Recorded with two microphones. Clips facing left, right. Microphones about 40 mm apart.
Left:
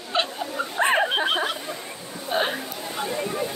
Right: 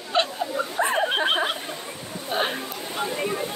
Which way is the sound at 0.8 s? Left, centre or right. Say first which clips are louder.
Left 3 dB; left.